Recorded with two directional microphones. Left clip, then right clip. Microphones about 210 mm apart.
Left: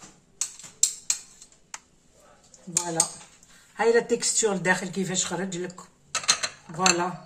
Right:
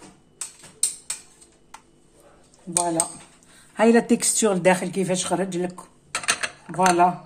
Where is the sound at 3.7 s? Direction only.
55° right (ahead or behind).